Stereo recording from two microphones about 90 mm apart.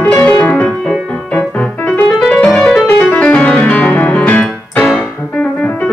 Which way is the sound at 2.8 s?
15° left (ahead or behind).